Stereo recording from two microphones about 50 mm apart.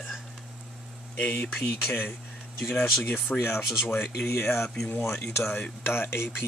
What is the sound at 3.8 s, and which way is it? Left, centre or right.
Speech, left.